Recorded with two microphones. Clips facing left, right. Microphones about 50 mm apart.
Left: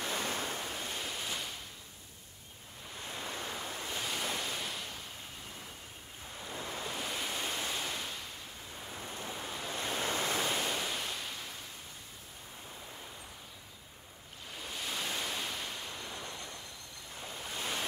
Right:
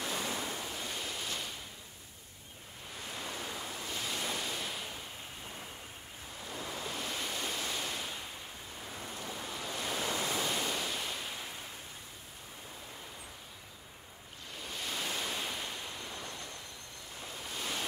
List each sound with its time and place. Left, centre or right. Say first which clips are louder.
0.0 s waves: left 1 dB; left
0.7 s waves: even; centre
3.2 s waves: left 1 dB; left
4.0 s waves: even; centre
6.4 s waves: even; left
6.9 s waves: left 1 dB; centre
8.9 s ocean: left 1 dB; centre
9.3 s waves: even; centre
9.7 s waves: left 1 dB; left
10.4 s ocean: left 1 dB; centre
14.6 s waves: even; centre
17.6 s waves: left 1 dB; centre